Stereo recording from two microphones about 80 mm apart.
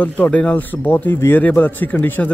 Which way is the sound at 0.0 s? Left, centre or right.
Centre.